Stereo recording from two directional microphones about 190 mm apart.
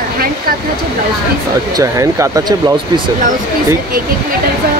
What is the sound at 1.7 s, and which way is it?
Speech, 15° right (ahead or behind).